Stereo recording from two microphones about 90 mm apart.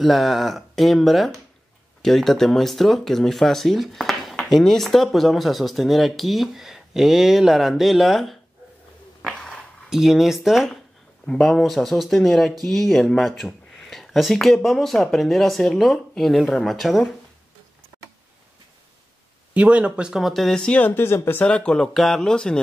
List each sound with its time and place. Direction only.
0.0 s speech: centre (ahead or behind)
9.2 s a sound: 5° left (ahead or behind)
9.8 s speech: 5° right (ahead or behind)
19.5 s speech: 15° right (ahead or behind); by 20.9 s 10° left (ahead or behind)
20.9 s speech: 25° left (ahead or behind)
21.5 s speech: 10° left (ahead or behind)